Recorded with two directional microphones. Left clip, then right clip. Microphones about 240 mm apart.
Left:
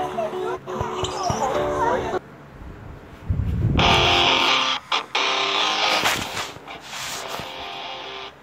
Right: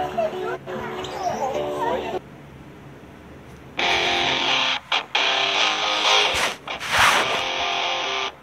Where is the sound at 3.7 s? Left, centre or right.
Centre.